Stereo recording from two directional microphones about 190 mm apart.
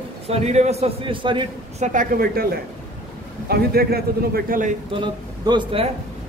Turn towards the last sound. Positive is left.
turn(degrees=-25)  # may be behind; listen again after turning